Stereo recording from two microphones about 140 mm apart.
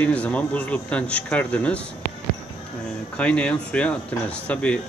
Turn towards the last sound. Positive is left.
turn(degrees=10)  # may be behind; listen again after turning